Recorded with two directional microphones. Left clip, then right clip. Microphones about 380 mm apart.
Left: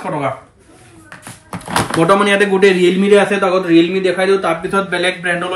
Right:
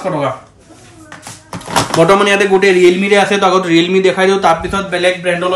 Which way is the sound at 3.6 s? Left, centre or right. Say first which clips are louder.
Right 2 dB; right.